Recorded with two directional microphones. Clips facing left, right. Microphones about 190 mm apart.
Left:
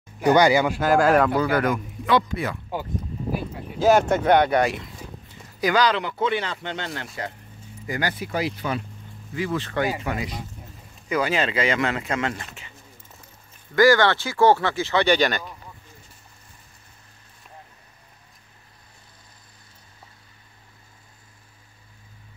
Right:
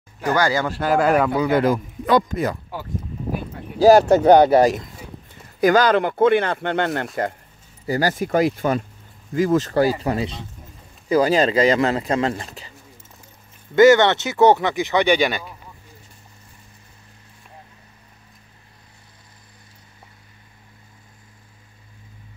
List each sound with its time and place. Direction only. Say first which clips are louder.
0.2 s speech: left 3 dB; 20° left (ahead or behind)
0.7 s speech: even; centre (ahead or behind)
1.5 s a man's voice: right 4 dB; 30° right (ahead or behind)
2.0 s speech: right 4 dB; 40° right (ahead or behind)
3.8 s speech: right 6 dB; 35° right (ahead or behind)
5.6 s speech: right 6 dB; 50° right (ahead or behind)
7.8 s speech: right 7 dB; 35° right (ahead or behind)
13.7 s speech: right 5 dB; 20° right (ahead or behind)